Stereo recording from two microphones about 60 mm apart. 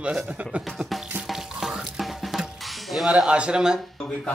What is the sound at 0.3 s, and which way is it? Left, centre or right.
Speech, right.